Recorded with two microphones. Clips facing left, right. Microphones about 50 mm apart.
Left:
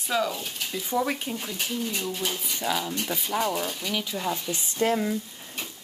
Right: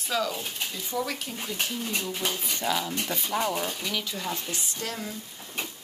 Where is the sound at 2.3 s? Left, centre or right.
Centre.